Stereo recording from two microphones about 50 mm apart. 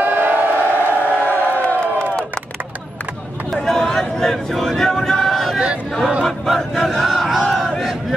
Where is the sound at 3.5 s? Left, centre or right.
Centre.